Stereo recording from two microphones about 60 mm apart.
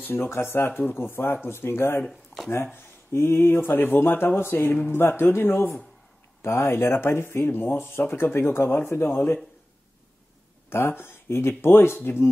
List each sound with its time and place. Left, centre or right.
0.0 s speech: left
2.0 s speech: centre
2.5 s speech: left
10.7 s speech: left